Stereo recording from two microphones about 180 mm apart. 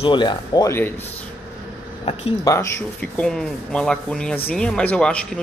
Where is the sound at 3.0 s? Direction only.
5° left (ahead or behind).